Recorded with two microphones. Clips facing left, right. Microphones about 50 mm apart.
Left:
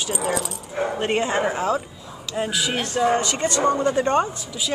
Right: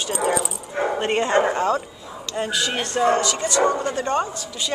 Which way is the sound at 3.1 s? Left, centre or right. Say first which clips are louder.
Right 1 dB; left.